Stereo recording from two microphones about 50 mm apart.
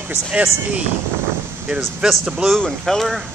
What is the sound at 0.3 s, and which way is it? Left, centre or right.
Speech, right.